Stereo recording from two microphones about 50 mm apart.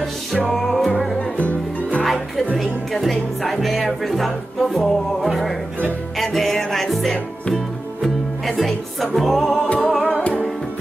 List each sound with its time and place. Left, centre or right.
0.4 s music: centre
2.0 s music: centre
10.0 s music: left